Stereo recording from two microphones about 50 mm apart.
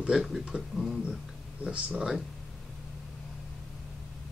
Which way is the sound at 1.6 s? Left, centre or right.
Right.